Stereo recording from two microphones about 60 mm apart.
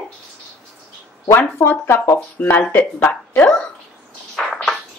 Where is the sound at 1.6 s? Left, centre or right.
Left.